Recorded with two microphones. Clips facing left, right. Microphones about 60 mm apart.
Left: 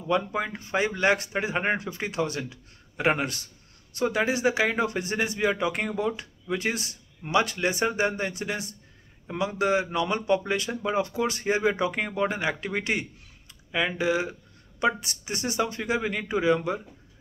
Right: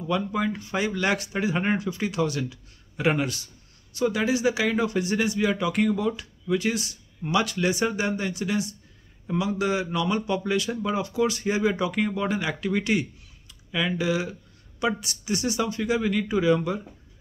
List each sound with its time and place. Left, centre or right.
0.1 s a man's voice: left